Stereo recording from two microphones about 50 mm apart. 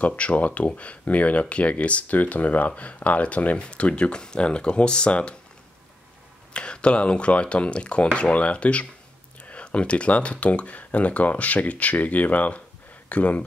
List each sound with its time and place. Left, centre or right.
0.0 s speech: left
6.5 s speech: left